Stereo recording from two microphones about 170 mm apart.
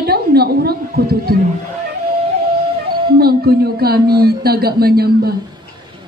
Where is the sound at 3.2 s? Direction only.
65° right (ahead or behind).